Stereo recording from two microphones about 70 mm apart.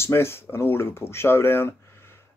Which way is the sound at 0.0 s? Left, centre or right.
Left.